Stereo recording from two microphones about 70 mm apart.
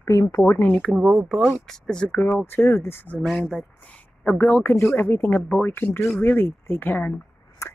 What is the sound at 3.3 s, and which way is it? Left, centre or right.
Speech, centre.